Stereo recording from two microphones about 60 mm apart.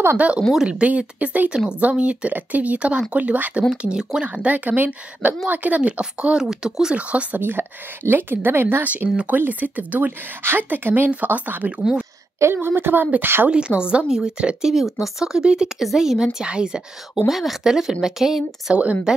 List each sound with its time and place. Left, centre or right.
0.7 s speech: centre
4.3 s speech: right
5.8 s speech: centre
7.3 s a woman's voice: right
8.8 s a woman's voice: right
11.8 s speech: centre
12.5 s a woman's voice: right
13.5 s speech: centre
14.7 s speech: centre
17.3 s speech: centre